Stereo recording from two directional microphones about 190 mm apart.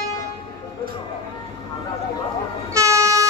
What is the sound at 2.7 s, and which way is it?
Train, 15° right (ahead or behind).